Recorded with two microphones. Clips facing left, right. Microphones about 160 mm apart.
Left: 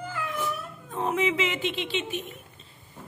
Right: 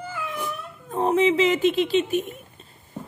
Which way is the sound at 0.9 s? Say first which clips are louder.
Right 7 dB; 35° right (ahead or behind).